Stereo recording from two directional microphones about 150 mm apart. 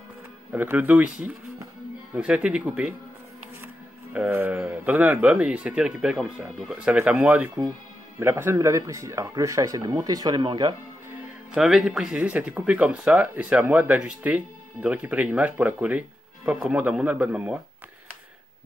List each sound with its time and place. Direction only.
0.5 s speech: 10° right (ahead or behind); by 10.7 s 30° right (ahead or behind)
11.5 s speech: centre (ahead or behind)